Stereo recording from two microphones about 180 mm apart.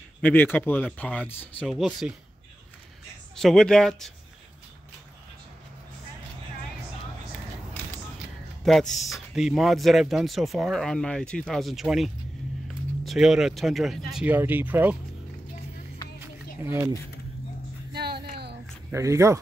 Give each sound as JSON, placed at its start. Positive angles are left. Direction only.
{"t": 0.2, "sound": "speech", "side_deg": 10}
{"t": 3.3, "sound": "speech", "side_deg": 5}
{"t": 8.9, "sound": "speech", "side_deg": 0}
{"t": 16.2, "sound": "a sound", "side_deg": -15}
{"t": 17.9, "sound": "a sound", "side_deg": -60}
{"t": 18.9, "sound": "speech", "side_deg": -15}